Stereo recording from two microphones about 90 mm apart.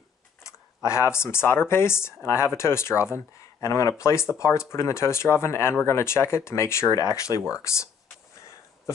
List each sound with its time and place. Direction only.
0.8 s speech: 30° left (ahead or behind)